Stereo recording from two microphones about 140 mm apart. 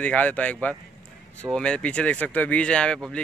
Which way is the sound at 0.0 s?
10° left (ahead or behind).